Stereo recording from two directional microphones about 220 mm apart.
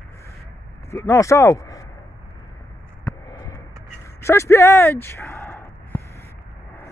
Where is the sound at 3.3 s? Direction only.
15° left (ahead or behind).